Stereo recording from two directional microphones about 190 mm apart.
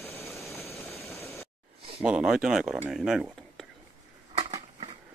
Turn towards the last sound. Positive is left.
turn(degrees=-25)  # may be behind; listen again after turning